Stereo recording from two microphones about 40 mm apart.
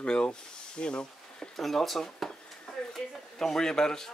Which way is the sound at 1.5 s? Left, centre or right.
Centre.